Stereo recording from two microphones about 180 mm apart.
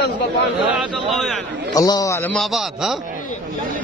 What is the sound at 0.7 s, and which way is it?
Speech, centre (ahead or behind).